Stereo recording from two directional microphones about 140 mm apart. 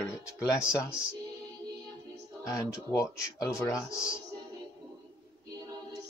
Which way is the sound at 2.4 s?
25° left (ahead or behind).